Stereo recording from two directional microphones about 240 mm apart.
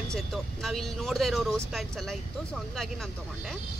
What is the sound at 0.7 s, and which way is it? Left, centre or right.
Speech, centre.